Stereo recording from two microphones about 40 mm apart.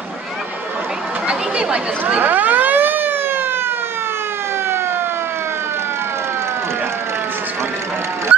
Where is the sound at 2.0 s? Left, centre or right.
Right.